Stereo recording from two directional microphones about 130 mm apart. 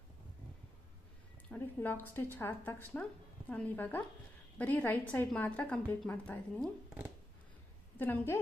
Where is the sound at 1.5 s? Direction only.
15° left (ahead or behind).